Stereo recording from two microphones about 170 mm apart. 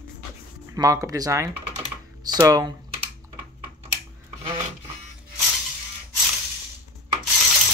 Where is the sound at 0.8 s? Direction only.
20° right (ahead or behind).